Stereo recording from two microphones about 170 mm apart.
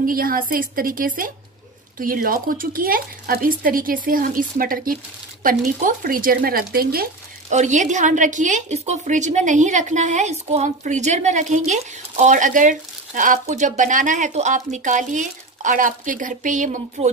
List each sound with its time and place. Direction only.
0.0 s a woman's voice: 55° right (ahead or behind)
7.4 s a woman's voice: 45° right (ahead or behind)